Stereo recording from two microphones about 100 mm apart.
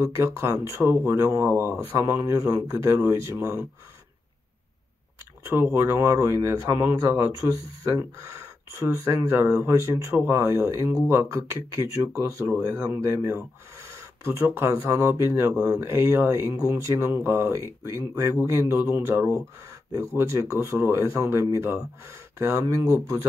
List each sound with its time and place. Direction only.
0.0 s speech: 30° right (ahead or behind)
5.5 s speech: 25° right (ahead or behind)